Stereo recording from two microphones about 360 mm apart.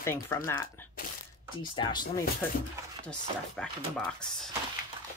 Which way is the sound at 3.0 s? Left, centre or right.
Centre.